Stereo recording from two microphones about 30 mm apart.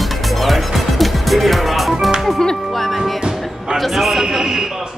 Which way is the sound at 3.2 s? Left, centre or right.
Right.